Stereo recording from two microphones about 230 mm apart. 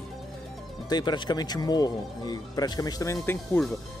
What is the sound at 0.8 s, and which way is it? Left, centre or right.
Speech, centre.